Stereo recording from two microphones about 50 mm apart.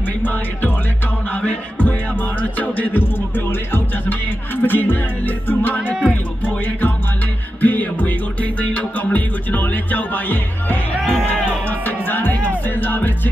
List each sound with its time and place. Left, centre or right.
0.2 s music: left
11.0 s music: centre
11.4 s music: left